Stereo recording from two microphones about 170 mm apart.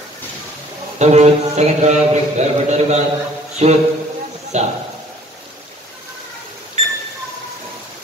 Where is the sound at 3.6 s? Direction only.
40° right (ahead or behind).